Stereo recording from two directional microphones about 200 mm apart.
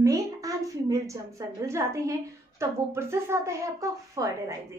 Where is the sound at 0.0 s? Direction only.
15° right (ahead or behind).